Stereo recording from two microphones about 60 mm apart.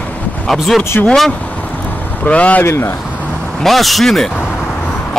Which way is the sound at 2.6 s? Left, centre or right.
Left.